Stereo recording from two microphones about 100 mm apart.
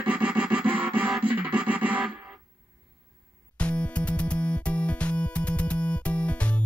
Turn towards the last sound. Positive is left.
turn(degrees=10)  # may be behind; listen again after turning